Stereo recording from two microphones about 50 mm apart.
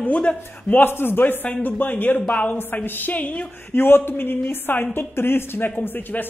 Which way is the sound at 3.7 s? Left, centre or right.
Left.